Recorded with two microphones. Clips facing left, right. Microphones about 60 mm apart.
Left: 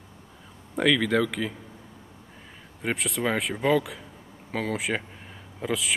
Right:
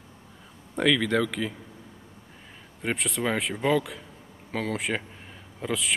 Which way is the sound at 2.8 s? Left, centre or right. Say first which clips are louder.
Left 1 dB; centre.